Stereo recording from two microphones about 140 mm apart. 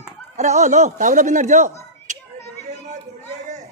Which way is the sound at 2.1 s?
60° right (ahead or behind).